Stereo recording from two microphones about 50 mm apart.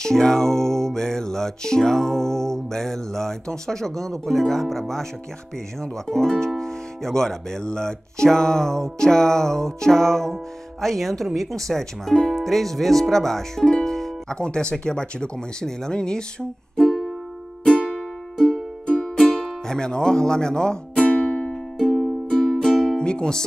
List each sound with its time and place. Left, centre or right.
0.0 s speech: centre
12.4 s speech: centre
13.7 s speech: centre
16.7 s music: centre
18.9 s music: centre
19.7 s speech: centre
21.9 s music: centre
22.9 s music: centre